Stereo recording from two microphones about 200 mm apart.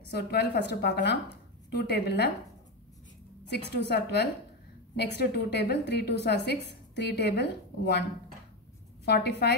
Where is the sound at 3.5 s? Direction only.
55° left (ahead or behind).